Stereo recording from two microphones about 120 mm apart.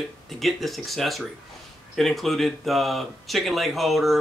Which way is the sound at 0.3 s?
Centre (ahead or behind).